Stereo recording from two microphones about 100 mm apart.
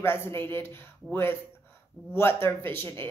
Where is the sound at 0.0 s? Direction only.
25° left (ahead or behind).